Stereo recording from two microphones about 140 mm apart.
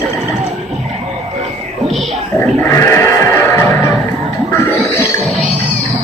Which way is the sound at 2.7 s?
20° left (ahead or behind).